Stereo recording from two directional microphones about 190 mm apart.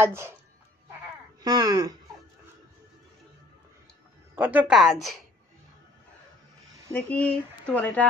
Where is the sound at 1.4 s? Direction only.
20° right (ahead or behind).